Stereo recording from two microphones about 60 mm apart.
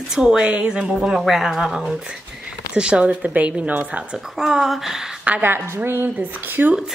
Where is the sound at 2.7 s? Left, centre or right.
Centre.